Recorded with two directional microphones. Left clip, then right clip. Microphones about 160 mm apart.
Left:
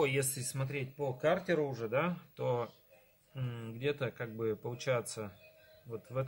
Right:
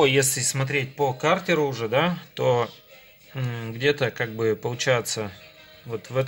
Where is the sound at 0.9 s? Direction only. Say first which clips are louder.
Right 9 dB; 20° right (ahead or behind).